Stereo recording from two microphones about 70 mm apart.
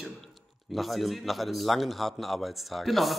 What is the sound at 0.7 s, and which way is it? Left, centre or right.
Speech, centre.